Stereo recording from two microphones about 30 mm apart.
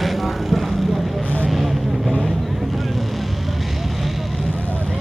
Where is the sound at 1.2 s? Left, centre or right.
Left.